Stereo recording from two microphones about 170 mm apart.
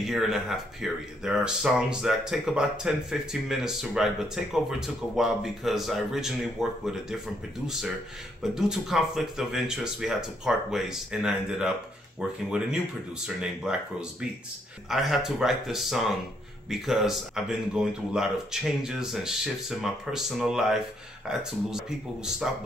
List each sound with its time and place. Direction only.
0.0 s speech: centre (ahead or behind)
14.9 s speech: centre (ahead or behind)